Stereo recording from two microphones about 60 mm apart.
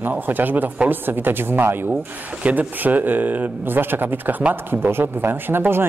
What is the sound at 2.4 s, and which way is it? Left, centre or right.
Speech, right.